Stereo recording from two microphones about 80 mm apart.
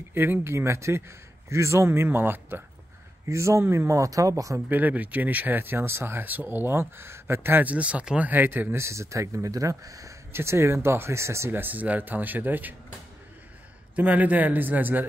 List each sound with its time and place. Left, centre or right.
0.1 s speech: right
4.6 s speech: right
7.7 s speech: centre
8.3 s speech: right
8.8 s speech: right
10.3 s speech: right
13.9 s speech: centre